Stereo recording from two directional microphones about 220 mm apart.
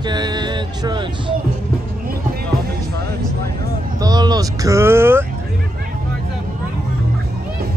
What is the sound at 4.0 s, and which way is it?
Speech, 15° right (ahead or behind).